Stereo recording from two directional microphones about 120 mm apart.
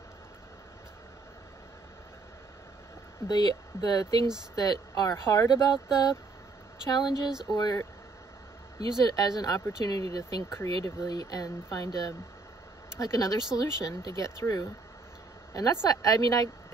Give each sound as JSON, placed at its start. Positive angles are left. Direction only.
{"t": 3.3, "sound": "speech", "side_deg": 35}
{"t": 6.9, "sound": "speech", "side_deg": 35}